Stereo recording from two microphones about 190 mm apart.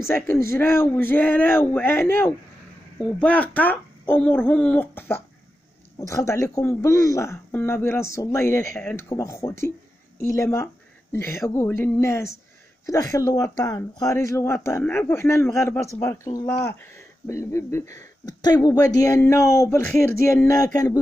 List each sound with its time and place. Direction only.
0.0 s speech: 15° left (ahead or behind)
17.3 s speech: 15° left (ahead or behind)